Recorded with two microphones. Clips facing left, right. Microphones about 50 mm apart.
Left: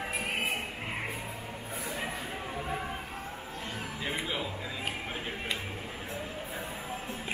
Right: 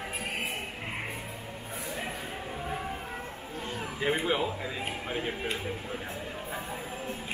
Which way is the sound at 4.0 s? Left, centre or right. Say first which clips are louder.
Right 7 dB; right.